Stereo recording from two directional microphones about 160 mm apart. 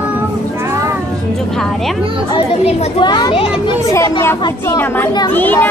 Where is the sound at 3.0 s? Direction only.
25° left (ahead or behind).